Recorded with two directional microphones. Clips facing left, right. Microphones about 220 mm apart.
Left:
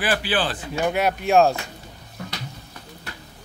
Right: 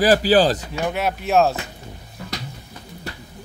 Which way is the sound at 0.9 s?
Centre (ahead or behind).